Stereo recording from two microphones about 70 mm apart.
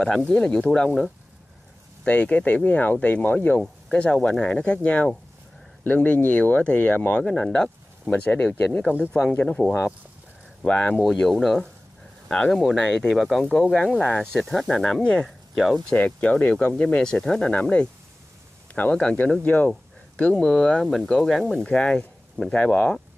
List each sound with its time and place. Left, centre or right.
0.3 s speech: centre
2.0 s speech: centre
7.2 s speech: centre
8.3 s speech: centre
10.6 s speech: centre
11.1 s speech: centre
15.9 s speech: centre
19.7 s a sound: centre
20.8 s speech: centre